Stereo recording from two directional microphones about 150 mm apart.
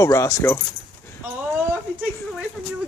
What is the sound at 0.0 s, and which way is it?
Speech, 20° left (ahead or behind).